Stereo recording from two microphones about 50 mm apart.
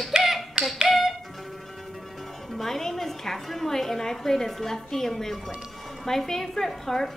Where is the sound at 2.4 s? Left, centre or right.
Centre.